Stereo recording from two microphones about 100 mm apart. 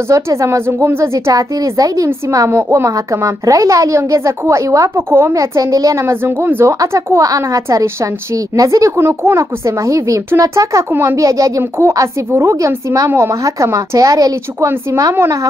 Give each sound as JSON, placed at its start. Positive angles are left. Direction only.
{"t": 0.1, "sound": "a woman's voice", "side_deg": -30}
{"t": 11.1, "sound": "a woman's voice", "side_deg": -35}